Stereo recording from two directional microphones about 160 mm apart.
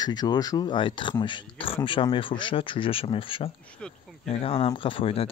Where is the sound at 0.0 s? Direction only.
25° left (ahead or behind).